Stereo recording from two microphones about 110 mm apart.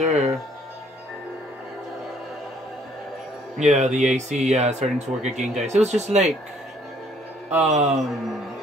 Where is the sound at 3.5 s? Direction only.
90° right.